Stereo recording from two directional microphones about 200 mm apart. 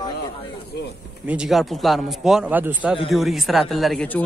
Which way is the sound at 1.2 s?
5° right (ahead or behind).